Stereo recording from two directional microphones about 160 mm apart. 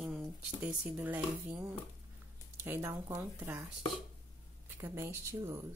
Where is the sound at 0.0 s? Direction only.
5° right (ahead or behind).